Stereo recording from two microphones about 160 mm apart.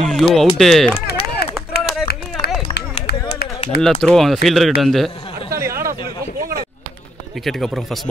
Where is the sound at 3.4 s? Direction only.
75° left (ahead or behind).